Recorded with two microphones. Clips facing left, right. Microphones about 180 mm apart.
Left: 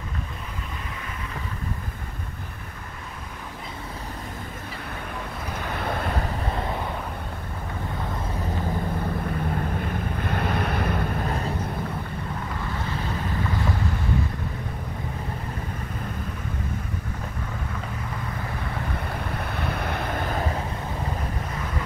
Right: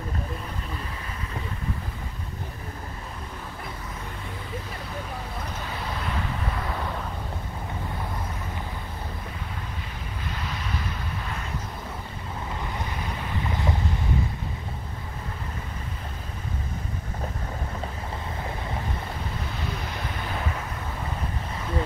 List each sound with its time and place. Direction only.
5.9 s vehicle: 50° left (ahead or behind)
9.4 s vehicle: 50° left (ahead or behind)
19.3 s wind noise: 60° left (ahead or behind)